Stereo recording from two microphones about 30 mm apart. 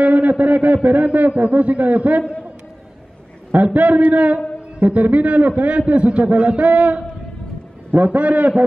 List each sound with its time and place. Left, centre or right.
0.0 s a sound: right
0.8 s a man's voice: right
3.5 s a man's voice: right
8.0 s a man's voice: right